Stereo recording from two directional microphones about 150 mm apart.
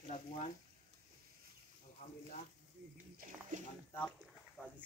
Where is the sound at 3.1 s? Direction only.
65° right (ahead or behind).